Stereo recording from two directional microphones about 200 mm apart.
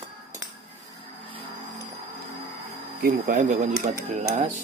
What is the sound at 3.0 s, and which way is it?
Speech, 40° right (ahead or behind).